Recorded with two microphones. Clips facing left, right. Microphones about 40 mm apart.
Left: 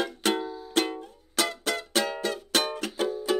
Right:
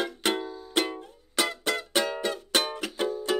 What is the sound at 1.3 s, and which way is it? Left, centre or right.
Music, centre.